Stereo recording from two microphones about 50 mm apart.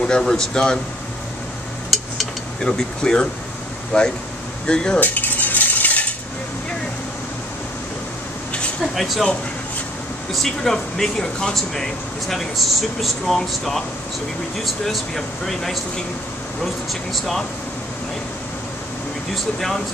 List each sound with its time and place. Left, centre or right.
0.0 s speech: centre
2.6 s speech: centre
4.6 s speech: centre
5.0 s cutlery: left
8.9 s speech: centre
10.3 s speech: centre
17.1 s speech: centre
19.3 s speech: centre